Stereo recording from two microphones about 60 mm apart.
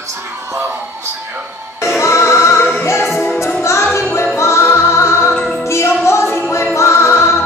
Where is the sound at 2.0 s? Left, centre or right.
Left.